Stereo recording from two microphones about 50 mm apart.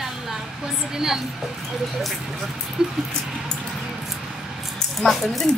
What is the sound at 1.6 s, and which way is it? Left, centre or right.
Speech, centre.